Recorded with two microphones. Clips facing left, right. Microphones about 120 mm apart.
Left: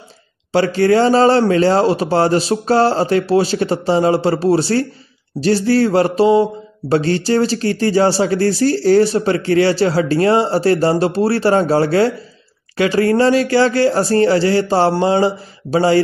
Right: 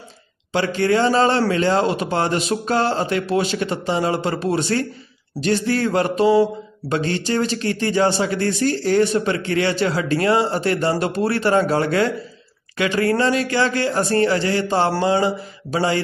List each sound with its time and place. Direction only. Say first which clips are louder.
0.5 s speech: left 5 dB; 35° left (ahead or behind)